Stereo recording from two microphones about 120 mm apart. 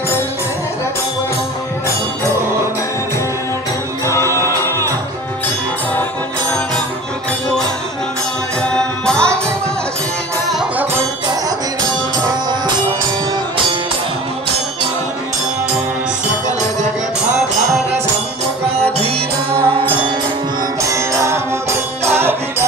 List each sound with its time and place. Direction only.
4.1 s music: 25° left (ahead or behind)
8.6 s music: 5° left (ahead or behind)
12.3 s music: 35° right (ahead or behind)
18.9 s music: 55° right (ahead or behind)
20.8 s music: 25° right (ahead or behind)